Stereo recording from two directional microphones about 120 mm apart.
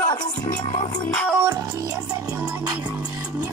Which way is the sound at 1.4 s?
30° right (ahead or behind).